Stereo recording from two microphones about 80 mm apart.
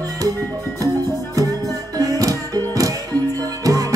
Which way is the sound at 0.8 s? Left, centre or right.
Right.